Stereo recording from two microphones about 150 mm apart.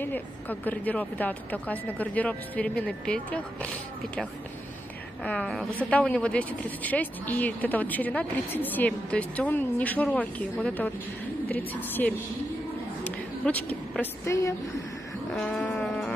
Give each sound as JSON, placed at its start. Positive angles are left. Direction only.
{"t": 0.0, "sound": "speech", "side_deg": 10}
{"t": 13.0, "sound": "a sound", "side_deg": 10}
{"t": 14.2, "sound": "speech", "side_deg": 20}
{"t": 15.3, "sound": "speech", "side_deg": 10}